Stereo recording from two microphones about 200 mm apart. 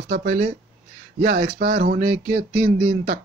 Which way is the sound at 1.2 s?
40° right (ahead or behind).